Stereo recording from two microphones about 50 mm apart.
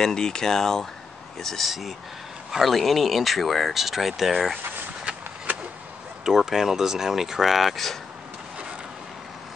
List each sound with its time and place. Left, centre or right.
0.0 s speech: centre
1.7 s speech: centre
5.1 s a sound: right
5.5 s vehicle: right
6.2 s speech: centre